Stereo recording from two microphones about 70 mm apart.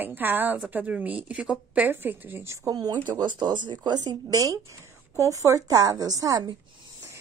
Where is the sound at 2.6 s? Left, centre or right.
Right.